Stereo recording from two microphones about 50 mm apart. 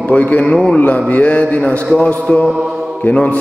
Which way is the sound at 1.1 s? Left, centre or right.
Left.